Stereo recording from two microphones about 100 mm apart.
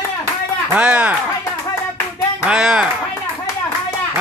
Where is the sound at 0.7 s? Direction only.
10° right (ahead or behind).